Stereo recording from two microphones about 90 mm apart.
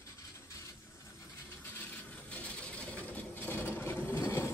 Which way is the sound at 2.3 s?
15° left (ahead or behind).